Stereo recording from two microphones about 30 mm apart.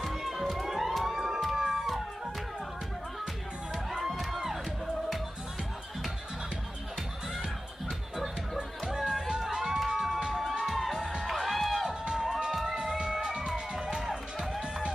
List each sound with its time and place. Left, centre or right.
0.0 s music: centre
0.7 s emergency vehicle: centre
1.4 s music: centre
4.0 s music: centre
8.9 s music: centre
9.3 s crowd: centre
9.8 s music: centre
11.2 s music: centre
12.5 s music: centre
13.9 s music: centre